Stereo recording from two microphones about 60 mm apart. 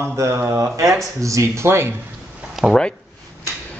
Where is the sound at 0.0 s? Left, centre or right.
Right.